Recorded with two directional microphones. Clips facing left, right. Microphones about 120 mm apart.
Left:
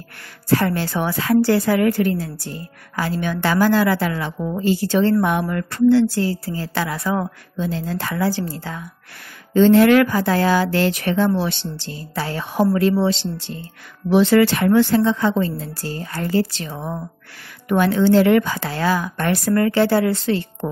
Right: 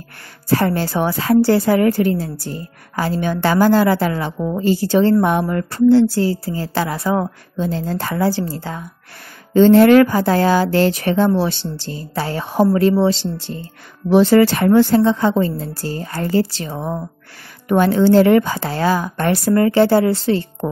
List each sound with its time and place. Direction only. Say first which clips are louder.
0.6 s a woman's voice: right 3 dB; 35° right (ahead or behind)